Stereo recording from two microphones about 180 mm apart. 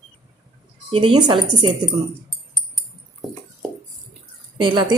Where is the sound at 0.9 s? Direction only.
25° right (ahead or behind).